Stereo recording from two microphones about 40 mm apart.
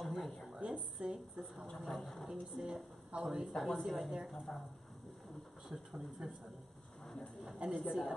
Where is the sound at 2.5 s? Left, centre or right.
Centre.